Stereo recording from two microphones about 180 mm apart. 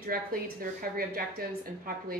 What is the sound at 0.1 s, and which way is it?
A woman's voice, 55° right (ahead or behind).